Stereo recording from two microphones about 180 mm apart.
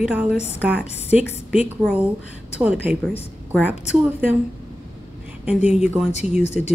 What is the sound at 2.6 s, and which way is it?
A woman's voice, 10° right (ahead or behind).